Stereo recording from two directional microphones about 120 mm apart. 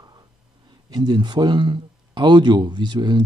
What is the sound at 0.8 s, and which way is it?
Speech, 35° right (ahead or behind).